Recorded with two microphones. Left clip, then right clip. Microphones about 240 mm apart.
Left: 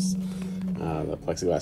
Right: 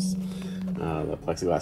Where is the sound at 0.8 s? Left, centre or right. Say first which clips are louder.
Right 1 dB; right.